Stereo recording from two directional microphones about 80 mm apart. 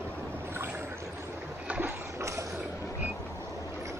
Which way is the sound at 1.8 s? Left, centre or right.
Right.